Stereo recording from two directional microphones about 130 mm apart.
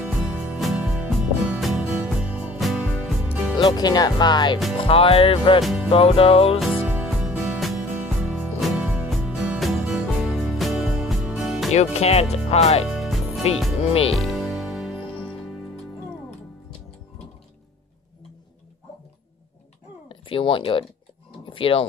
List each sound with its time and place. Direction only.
0.0 s music: 5° right (ahead or behind)
3.5 s speech: 30° left (ahead or behind)
4.7 s music: 45° left (ahead or behind)
5.6 s music: centre (ahead or behind)
5.9 s music: 45° left (ahead or behind)
6.6 s music: 5° right (ahead or behind)
11.7 s speech: 55° left (ahead or behind)
12.8 s music: centre (ahead or behind)
20.1 s speech: 40° left (ahead or behind)